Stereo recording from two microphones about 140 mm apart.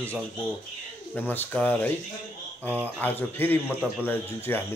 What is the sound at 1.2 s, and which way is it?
Speech, 15° left (ahead or behind).